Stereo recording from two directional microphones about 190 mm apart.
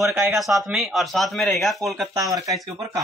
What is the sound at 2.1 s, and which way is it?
Speech, 15° right (ahead or behind).